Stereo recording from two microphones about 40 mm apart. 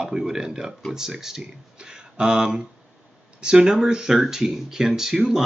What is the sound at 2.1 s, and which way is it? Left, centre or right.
Speech, right.